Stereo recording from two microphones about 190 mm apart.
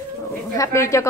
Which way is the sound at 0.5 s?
15° left (ahead or behind).